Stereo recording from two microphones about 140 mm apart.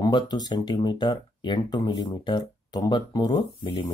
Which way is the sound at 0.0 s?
30° left (ahead or behind).